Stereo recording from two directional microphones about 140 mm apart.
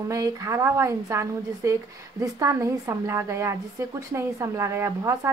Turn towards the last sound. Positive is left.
turn(degrees=-20)  # may be behind; listen again after turning